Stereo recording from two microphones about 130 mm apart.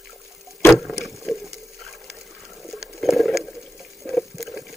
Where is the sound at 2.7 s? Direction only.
Centre (ahead or behind).